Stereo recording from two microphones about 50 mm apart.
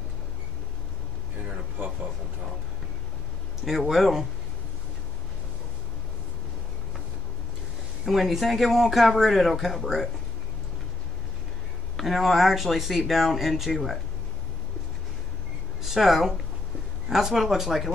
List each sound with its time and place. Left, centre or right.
3.6 s speech: centre
8.0 s speech: centre
12.0 s speech: centre
15.8 s speech: centre